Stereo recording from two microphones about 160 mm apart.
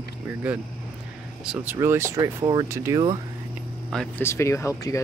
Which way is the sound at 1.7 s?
15° right (ahead or behind).